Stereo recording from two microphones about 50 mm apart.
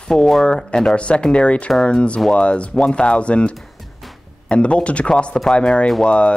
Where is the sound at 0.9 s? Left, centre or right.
Left.